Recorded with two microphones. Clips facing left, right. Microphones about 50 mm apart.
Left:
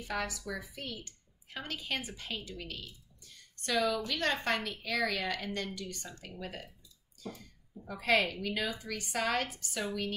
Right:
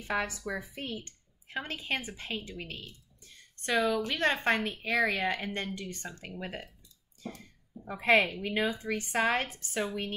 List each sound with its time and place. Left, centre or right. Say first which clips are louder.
0.0 s speech: right 4 dB; right
3.2 s a sound: even; right
4.1 s a woman's voice: right 4 dB; right
7.8 s a woman's voice: right 4 dB; right